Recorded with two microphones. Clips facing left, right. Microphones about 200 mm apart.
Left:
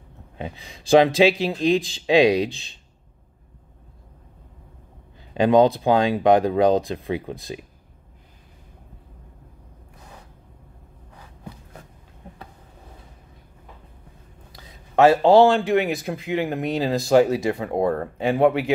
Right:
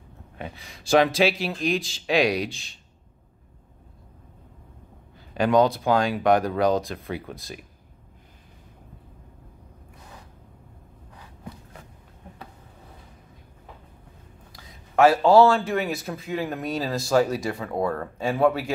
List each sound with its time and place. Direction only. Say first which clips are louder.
0.4 s speech: left 4 dB; 20° left (ahead or behind)
5.3 s speech: left 4 dB; 25° left (ahead or behind)
14.5 s a sound: left 4 dB; 20° left (ahead or behind)
16.1 s speech: left 4 dB; 20° left (ahead or behind)